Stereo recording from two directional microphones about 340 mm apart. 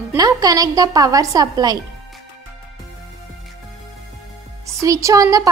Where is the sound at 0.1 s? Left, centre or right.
Centre.